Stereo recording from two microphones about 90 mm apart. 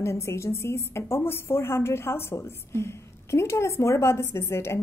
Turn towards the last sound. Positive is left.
turn(degrees=30)  # may be behind; listen again after turning